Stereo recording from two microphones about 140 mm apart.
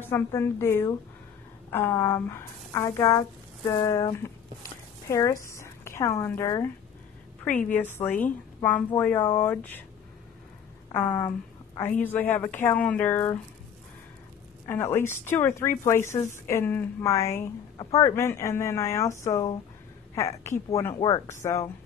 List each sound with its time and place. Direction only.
0.0 s a woman's voice: 20° left (ahead or behind)
11.0 s a woman's voice: 15° left (ahead or behind)
14.7 s a woman's voice: 15° left (ahead or behind)